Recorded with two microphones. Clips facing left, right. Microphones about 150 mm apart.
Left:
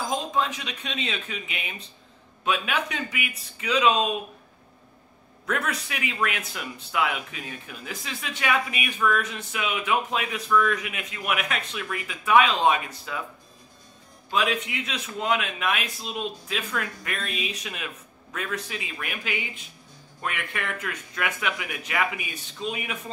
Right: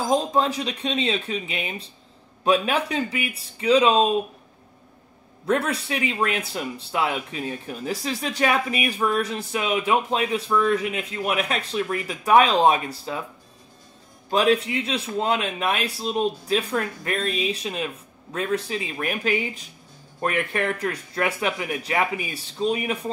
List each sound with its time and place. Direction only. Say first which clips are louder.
0.1 s speech: right 7 dB; 35° right (ahead or behind)
5.5 s speech: right 6 dB; 30° right (ahead or behind)
14.3 s speech: right 6 dB; 35° right (ahead or behind)